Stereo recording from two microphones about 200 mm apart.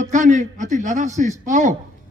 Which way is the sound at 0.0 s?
40° right (ahead or behind).